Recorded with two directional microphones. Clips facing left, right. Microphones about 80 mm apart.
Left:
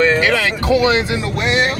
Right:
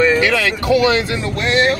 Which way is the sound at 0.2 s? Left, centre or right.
Left.